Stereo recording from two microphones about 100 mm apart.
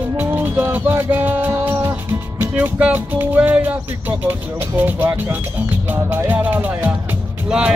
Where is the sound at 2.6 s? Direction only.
15° right (ahead or behind).